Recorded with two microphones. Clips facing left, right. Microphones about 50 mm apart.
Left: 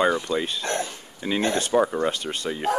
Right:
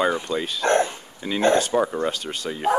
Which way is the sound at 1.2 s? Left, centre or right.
Centre.